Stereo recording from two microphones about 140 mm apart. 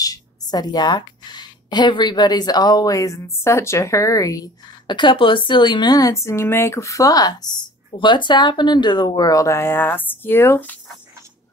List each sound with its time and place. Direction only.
0.0 s a woman's voice: 25° left (ahead or behind)